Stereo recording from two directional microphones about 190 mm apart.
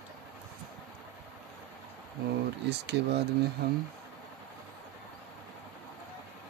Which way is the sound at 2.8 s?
60° right (ahead or behind).